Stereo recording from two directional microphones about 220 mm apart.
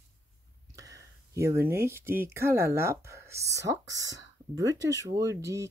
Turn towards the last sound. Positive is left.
turn(degrees=-15)  # may be behind; listen again after turning